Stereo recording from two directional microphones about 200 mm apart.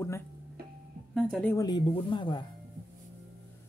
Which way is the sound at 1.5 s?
20° left (ahead or behind).